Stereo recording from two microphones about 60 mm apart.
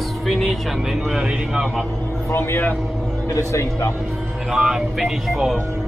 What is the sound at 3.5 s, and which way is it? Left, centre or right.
Speech, left.